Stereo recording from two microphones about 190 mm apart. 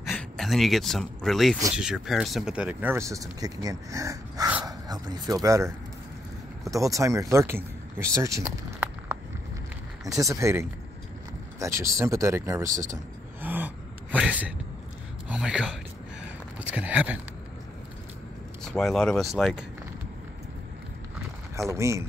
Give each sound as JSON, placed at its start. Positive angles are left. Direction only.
{"t": 0.0, "sound": "speech", "side_deg": 0}
{"t": 6.7, "sound": "speech", "side_deg": -15}
{"t": 18.6, "sound": "speech", "side_deg": 0}
{"t": 21.6, "sound": "speech", "side_deg": -15}